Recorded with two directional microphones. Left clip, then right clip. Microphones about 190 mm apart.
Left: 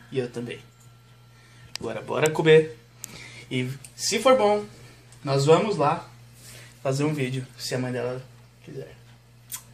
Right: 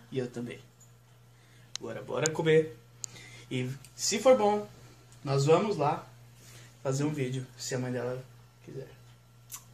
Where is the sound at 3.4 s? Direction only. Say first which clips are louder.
Left 6 dB; 5° left (ahead or behind).